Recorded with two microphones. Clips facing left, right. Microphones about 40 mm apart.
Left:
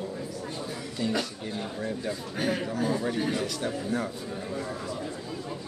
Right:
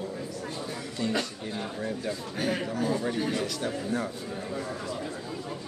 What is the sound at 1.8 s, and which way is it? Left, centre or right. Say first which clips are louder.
A man's voice: even; centre.